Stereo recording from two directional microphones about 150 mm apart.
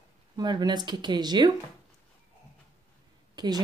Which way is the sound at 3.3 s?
25° right (ahead or behind).